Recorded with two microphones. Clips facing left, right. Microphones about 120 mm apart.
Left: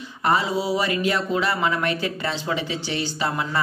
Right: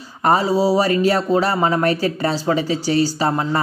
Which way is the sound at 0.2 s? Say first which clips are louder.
Right 6 dB; 40° right (ahead or behind).